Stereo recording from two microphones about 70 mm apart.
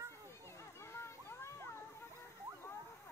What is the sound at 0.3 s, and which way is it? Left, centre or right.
Children playing, left.